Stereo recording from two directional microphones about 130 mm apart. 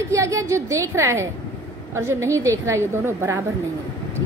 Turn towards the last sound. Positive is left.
turn(degrees=-20)  # may be behind; listen again after turning